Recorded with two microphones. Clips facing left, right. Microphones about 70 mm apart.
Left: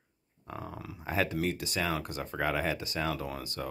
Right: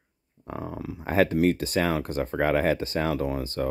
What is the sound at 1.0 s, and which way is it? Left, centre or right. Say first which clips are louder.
Speech: right 9 dB; right.